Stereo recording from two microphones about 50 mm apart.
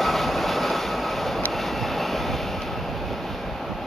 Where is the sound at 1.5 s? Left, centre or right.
Centre.